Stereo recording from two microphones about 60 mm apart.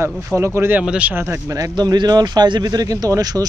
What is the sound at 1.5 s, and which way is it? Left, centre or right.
Speech, right.